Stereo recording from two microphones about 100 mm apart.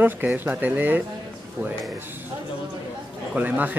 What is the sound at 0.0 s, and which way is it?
Speech, 20° right (ahead or behind).